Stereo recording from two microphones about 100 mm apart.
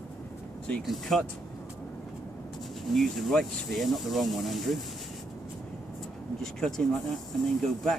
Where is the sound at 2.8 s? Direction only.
Centre (ahead or behind).